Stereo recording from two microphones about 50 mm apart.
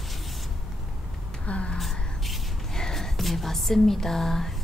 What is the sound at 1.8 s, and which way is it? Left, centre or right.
Whispering, centre.